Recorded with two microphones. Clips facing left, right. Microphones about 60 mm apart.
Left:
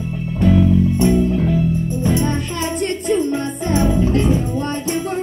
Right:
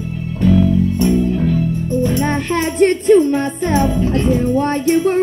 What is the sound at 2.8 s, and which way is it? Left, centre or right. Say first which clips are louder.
Music: right 9 dB; right.